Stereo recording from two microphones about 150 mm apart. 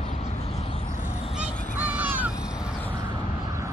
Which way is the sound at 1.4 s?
10° right (ahead or behind).